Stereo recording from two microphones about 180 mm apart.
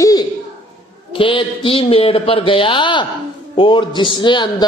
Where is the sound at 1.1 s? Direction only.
30° left (ahead or behind).